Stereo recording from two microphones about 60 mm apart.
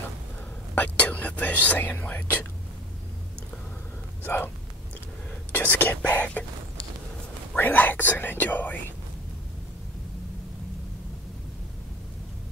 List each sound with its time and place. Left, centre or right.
0.7 s speech: left
5.5 s speech: left
7.5 s speech: left